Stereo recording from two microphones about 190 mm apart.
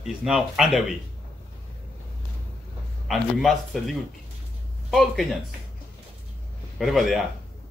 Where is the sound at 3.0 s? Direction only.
Centre (ahead or behind).